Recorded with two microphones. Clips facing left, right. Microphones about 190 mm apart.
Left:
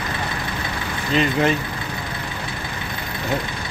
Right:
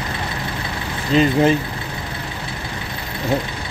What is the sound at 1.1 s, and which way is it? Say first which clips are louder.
Speech: right 4 dB; 35° right (ahead or behind).